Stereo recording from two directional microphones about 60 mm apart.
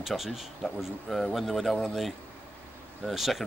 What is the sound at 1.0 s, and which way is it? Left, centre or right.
Speech, centre.